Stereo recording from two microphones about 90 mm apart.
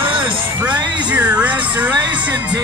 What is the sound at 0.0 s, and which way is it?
Music, 70° right (ahead or behind).